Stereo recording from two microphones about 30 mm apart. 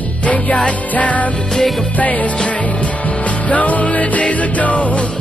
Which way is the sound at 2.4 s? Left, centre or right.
Left.